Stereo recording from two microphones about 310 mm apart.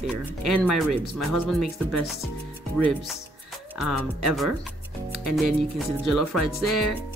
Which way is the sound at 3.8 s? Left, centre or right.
Centre.